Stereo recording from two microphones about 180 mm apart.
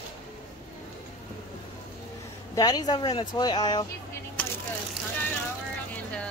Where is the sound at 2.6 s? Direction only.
20° left (ahead or behind).